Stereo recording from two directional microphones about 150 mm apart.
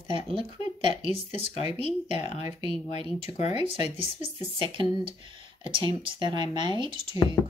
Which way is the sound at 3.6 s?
35° right (ahead or behind).